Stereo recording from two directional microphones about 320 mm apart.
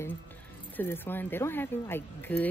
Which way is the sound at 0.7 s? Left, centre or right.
Centre.